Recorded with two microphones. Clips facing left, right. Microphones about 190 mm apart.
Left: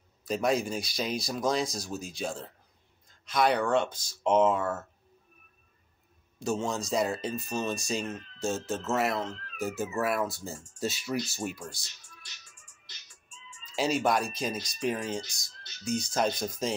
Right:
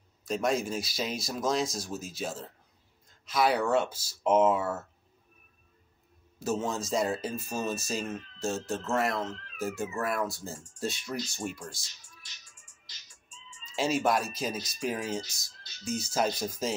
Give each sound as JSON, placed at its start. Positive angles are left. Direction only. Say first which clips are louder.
{"t": 0.2, "sound": "speech", "louder": "left 1 dB", "side_deg": 0}
{"t": 6.4, "sound": "speech", "louder": "even", "side_deg": -5}
{"t": 13.7, "sound": "speech", "louder": "even", "side_deg": 0}